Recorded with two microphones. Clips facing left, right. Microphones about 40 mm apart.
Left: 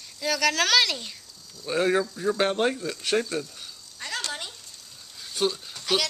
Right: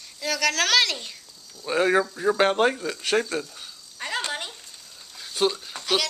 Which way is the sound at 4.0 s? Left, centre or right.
Centre.